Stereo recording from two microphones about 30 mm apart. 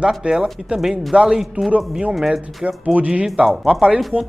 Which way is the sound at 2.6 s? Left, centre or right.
Right.